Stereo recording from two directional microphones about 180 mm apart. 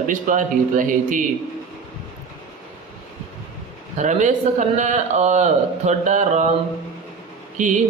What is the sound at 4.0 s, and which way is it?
A man's voice, 40° right (ahead or behind).